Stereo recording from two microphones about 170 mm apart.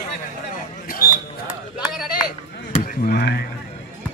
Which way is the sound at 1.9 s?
5° right (ahead or behind).